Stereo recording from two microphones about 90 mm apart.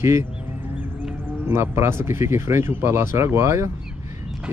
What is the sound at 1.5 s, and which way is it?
Speech, 30° right (ahead or behind).